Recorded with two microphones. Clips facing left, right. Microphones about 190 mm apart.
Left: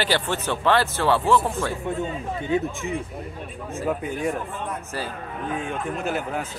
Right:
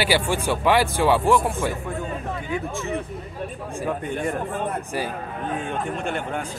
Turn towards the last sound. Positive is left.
turn(degrees=5)  # may be behind; listen again after turning